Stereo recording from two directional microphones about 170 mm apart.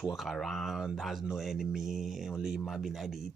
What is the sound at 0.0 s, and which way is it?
Speech, centre (ahead or behind).